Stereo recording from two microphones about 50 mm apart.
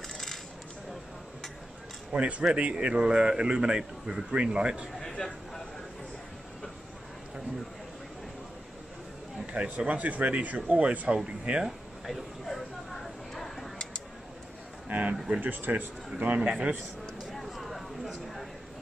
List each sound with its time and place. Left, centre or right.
2.1 s a man's voice: right
5.2 s speech: centre
9.5 s speech: right
12.4 s a sound: centre
14.9 s a man's voice: right
16.3 s speech: centre
17.2 s a sound: centre